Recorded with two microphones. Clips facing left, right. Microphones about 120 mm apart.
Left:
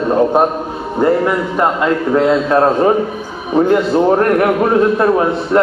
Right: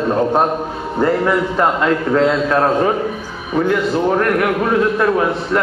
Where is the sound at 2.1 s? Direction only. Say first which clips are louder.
Left 4 dB; 30° left (ahead or behind).